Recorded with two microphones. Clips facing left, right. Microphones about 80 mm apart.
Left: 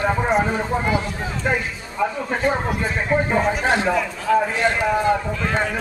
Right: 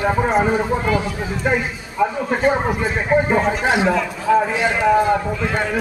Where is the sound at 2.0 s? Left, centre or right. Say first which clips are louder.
Right 4 dB; centre.